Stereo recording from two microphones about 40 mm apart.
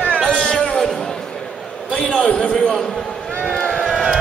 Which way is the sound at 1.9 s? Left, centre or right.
Left.